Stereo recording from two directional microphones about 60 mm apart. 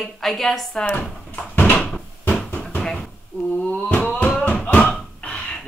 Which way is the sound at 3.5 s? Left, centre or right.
Left.